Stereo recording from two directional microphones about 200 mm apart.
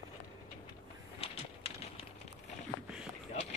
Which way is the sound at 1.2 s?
30° left (ahead or behind).